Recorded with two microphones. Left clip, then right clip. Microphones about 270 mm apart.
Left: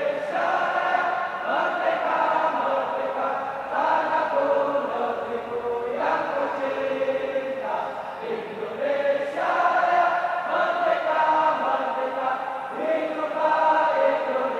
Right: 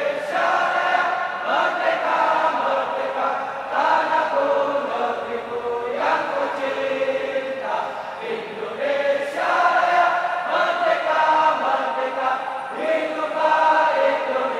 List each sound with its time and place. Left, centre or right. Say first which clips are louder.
0.0 s choir: right 3 dB; centre
6.0 s chant: right 4 dB; centre
9.4 s chant: right 4 dB; centre
12.8 s choir: right 3 dB; centre